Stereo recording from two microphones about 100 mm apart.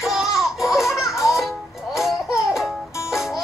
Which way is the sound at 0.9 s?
5° right (ahead or behind).